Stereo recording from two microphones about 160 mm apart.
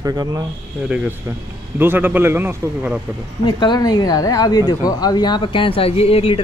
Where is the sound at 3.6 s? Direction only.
25° left (ahead or behind).